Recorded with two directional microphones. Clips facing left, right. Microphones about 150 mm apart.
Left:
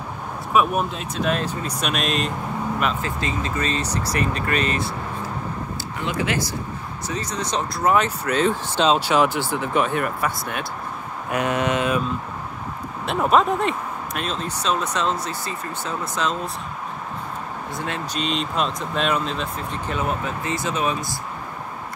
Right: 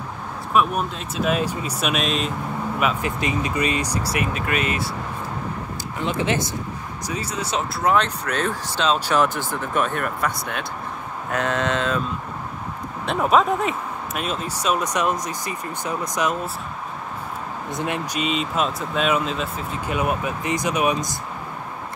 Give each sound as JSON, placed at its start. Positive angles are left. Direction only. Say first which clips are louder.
{"t": 0.5, "sound": "speech", "louder": "left 1 dB", "side_deg": 0}
{"t": 3.0, "sound": "speech", "louder": "right 2 dB", "side_deg": -15}
{"t": 6.0, "sound": "speech", "louder": "right 2 dB", "side_deg": -20}
{"t": 7.1, "sound": "speech", "louder": "even", "side_deg": -10}
{"t": 9.1, "sound": "speech", "louder": "left 1 dB", "side_deg": 15}
{"t": 13.0, "sound": "speech", "louder": "even", "side_deg": 0}
{"t": 17.6, "sound": "speech", "louder": "right 4 dB", "side_deg": -20}